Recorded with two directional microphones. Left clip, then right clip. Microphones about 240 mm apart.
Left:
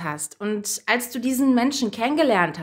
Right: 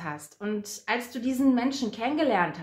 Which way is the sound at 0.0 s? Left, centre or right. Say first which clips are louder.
Left 6 dB; left.